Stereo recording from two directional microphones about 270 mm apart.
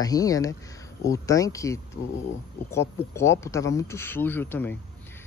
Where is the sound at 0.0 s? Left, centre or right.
Centre.